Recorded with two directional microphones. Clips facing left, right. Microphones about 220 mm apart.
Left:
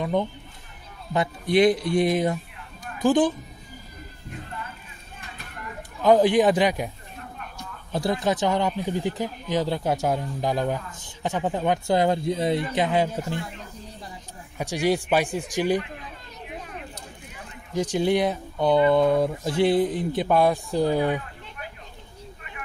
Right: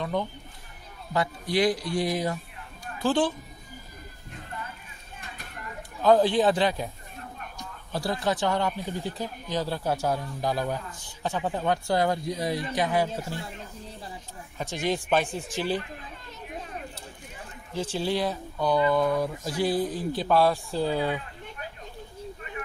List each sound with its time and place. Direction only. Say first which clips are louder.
0.0 s speech: left 4 dB; 20° left (ahead or behind)
6.0 s speech: left 3 dB; 15° left (ahead or behind)
7.9 s speech: left 4 dB; 20° left (ahead or behind)
14.6 s speech: left 5 dB; 10° left (ahead or behind)
17.7 s speech: left 6 dB; 15° left (ahead or behind)